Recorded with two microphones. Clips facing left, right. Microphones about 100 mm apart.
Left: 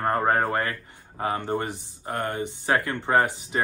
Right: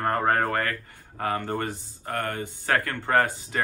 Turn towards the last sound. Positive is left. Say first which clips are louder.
# left 1 dB
turn(degrees=20)  # may be behind; listen again after turning